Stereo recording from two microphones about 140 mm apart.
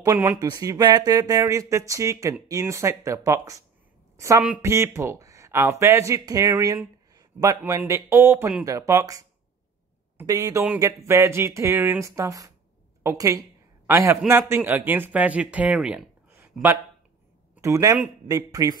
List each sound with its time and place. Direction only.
0.0 s speech: 20° right (ahead or behind)
10.2 s a woman's voice: 25° right (ahead or behind)
17.6 s speech: 20° right (ahead or behind)